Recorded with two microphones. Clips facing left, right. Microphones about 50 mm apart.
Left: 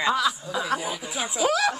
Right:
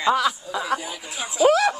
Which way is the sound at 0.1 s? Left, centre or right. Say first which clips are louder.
Right 7 dB; right.